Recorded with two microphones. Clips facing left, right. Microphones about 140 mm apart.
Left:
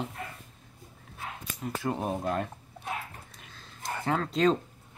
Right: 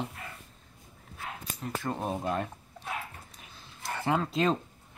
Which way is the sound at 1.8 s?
10° left (ahead or behind).